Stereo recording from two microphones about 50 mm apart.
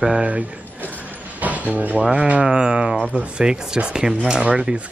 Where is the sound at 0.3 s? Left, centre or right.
Right.